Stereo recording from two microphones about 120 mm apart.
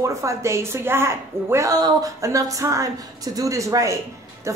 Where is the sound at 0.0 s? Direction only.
25° right (ahead or behind).